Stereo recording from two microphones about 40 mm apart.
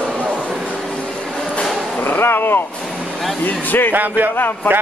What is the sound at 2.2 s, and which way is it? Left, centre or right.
Speech, left.